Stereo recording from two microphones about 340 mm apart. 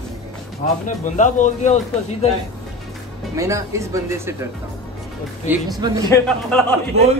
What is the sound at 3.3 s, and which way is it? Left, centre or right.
Speech, centre.